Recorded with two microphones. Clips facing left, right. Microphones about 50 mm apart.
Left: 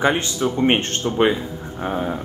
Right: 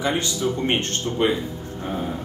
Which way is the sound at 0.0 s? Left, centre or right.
Left.